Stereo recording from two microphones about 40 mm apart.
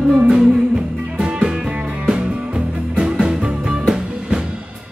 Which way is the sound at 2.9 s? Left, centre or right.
Right.